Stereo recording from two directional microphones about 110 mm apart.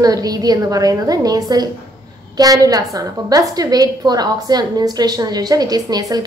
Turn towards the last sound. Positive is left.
turn(degrees=-35)  # may be behind; listen again after turning